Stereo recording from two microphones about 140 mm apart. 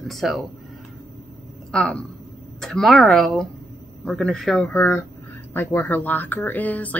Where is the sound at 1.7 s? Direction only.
10° left (ahead or behind).